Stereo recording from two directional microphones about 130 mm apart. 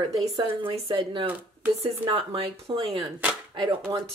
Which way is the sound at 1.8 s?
40° right (ahead or behind).